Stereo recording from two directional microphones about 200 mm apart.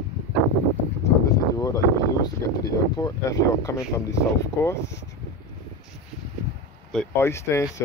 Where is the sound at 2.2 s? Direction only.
15° left (ahead or behind).